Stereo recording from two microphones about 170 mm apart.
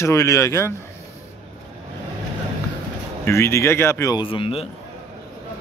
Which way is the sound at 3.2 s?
15° left (ahead or behind).